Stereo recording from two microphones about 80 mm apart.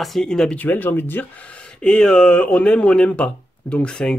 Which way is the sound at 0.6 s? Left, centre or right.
Left.